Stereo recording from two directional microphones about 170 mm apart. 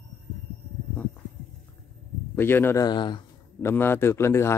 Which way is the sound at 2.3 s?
15° left (ahead or behind).